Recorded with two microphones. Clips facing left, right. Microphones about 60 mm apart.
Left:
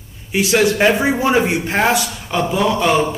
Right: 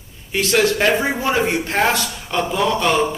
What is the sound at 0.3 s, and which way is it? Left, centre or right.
A man's voice, centre.